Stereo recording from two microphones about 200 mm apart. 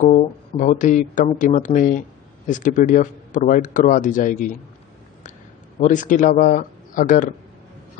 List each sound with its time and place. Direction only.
0.0 s speech: 35° left (ahead or behind)
5.8 s speech: 40° left (ahead or behind)